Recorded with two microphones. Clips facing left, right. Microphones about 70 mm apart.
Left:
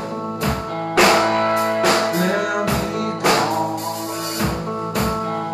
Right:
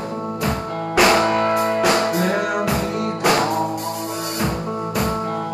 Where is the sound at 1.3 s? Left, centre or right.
Left.